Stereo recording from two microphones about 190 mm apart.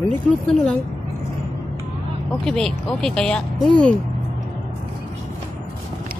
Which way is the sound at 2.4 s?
5° left (ahead or behind).